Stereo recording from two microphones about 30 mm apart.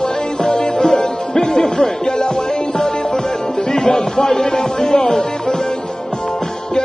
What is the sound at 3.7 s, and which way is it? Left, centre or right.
Speech, left.